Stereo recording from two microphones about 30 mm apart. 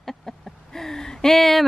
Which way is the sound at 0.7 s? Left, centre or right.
Centre.